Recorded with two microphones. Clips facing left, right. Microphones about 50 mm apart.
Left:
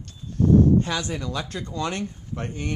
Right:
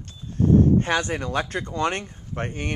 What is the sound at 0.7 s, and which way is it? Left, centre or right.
Speech, right.